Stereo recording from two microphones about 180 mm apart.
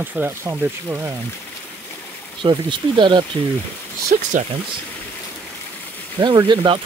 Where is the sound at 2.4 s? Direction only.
25° right (ahead or behind).